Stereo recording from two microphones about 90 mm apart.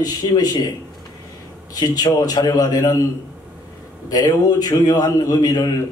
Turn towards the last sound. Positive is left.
turn(degrees=45)  # may be behind; listen again after turning